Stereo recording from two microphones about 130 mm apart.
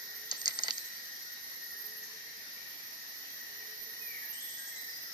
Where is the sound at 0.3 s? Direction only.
30° right (ahead or behind).